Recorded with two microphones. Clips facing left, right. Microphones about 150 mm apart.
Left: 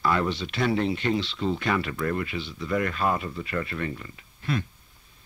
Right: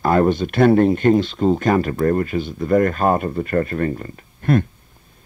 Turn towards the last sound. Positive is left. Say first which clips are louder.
# right 11 dB
turn(degrees=-50)  # may be behind; listen again after turning